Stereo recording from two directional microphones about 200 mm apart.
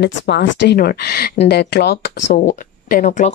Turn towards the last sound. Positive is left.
turn(degrees=40)  # may be behind; listen again after turning